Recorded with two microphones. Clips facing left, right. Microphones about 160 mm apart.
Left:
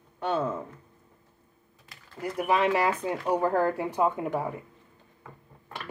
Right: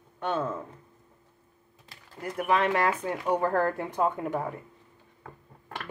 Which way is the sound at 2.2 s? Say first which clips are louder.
Left 1 dB; 10° left (ahead or behind).